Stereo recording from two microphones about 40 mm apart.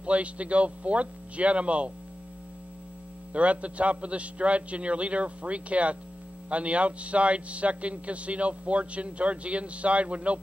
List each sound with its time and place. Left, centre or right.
0.0 s a man's voice: right
3.3 s a man's voice: right